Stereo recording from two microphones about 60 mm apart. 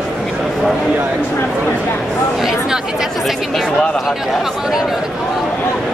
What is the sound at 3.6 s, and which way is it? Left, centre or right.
Speech, centre.